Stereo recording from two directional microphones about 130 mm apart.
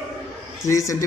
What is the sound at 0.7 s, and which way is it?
Speech, 25° left (ahead or behind).